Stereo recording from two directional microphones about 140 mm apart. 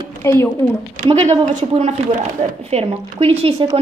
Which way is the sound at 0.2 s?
20° left (ahead or behind).